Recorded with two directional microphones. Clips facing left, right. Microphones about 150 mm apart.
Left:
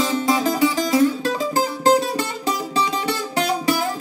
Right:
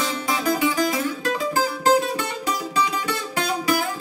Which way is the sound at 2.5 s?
30° left (ahead or behind).